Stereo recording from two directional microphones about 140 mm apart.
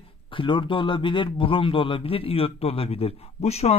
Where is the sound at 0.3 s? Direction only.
35° left (ahead or behind).